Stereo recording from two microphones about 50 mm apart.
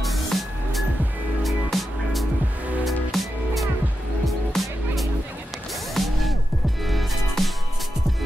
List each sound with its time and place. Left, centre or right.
0.0 s music: centre
6.0 s music: centre